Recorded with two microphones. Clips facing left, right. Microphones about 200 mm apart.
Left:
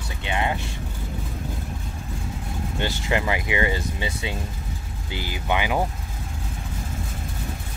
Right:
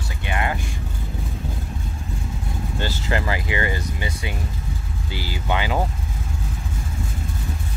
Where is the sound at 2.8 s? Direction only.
20° left (ahead or behind).